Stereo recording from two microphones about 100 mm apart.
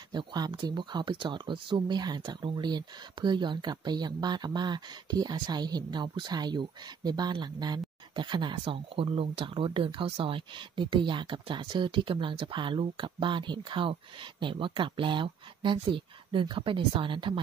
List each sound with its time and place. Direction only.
0.1 s speech: 45° right (ahead or behind)